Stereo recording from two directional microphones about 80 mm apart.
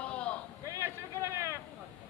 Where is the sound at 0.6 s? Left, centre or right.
Right.